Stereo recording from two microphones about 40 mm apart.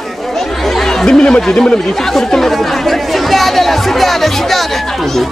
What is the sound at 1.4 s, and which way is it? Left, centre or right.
Speech, centre.